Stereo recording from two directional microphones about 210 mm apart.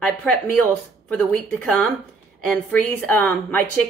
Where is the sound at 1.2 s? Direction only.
10° left (ahead or behind).